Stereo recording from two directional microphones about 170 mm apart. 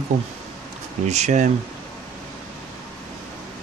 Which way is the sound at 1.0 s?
40° right (ahead or behind).